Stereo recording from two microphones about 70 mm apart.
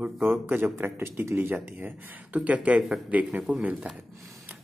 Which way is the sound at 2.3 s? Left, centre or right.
Right.